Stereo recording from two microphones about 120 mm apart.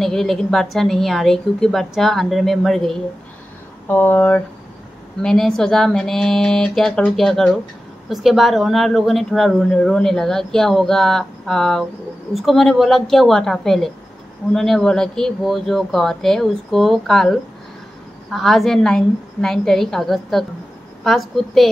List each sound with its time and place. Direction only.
0.0 s speech: 5° left (ahead or behind)
3.8 s speech: 15° left (ahead or behind)
5.2 s speech: 5° left (ahead or behind)